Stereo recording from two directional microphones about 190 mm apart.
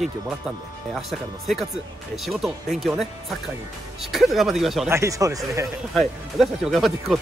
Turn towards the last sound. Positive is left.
turn(degrees=0)  # may be behind; listen again after turning